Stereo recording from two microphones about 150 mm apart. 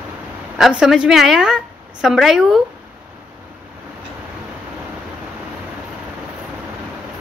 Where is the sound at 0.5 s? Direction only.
Centre (ahead or behind).